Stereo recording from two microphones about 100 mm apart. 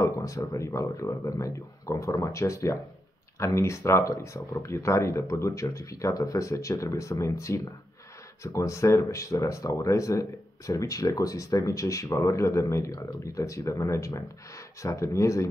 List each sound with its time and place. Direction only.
0.0 s speech: 35° left (ahead or behind)